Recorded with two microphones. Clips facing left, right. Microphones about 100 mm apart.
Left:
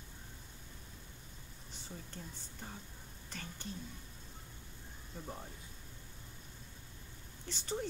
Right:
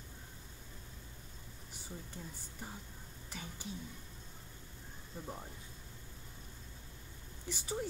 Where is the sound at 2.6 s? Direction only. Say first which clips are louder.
Right 1 dB; 10° right (ahead or behind).